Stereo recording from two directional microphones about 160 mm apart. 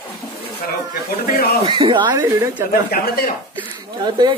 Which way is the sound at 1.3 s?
75° left (ahead or behind).